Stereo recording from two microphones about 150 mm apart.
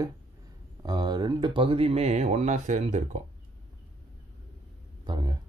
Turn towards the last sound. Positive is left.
turn(degrees=-25)  # may be behind; listen again after turning